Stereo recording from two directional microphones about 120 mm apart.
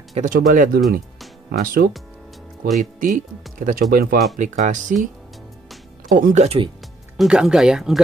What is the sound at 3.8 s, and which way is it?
Speech, centre (ahead or behind).